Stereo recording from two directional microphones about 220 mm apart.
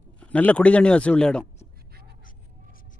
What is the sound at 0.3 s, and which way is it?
Speech, 5° left (ahead or behind).